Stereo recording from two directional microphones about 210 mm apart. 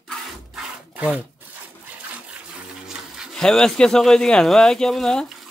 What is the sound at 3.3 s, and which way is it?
Speech, centre (ahead or behind).